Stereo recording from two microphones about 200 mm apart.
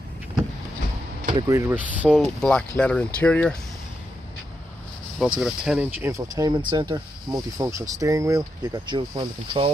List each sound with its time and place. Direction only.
1.3 s speech: 15° right (ahead or behind); by 3.5 s 5° left (ahead or behind)
5.2 s speech: centre (ahead or behind)
6.3 s speech: 20° right (ahead or behind)